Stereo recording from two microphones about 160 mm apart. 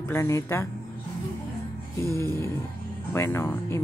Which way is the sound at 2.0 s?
15° left (ahead or behind).